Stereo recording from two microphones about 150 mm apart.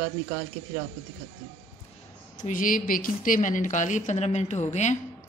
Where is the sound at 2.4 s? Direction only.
60° left (ahead or behind).